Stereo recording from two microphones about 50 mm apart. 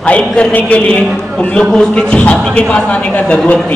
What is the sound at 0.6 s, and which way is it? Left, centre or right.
Speech, left.